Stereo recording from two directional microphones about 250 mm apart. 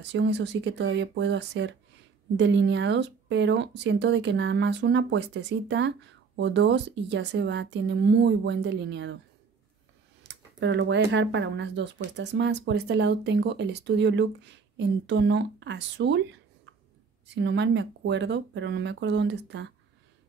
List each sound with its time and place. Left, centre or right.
0.0 s speech: right
10.2 s speech: right
17.3 s speech: right